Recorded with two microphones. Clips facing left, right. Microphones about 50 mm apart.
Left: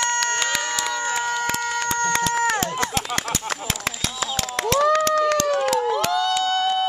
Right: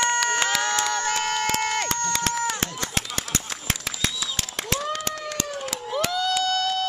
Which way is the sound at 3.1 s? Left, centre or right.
Left.